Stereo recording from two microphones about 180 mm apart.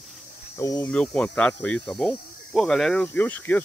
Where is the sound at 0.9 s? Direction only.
5° left (ahead or behind).